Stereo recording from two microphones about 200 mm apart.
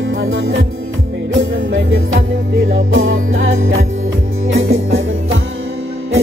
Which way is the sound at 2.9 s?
85° right.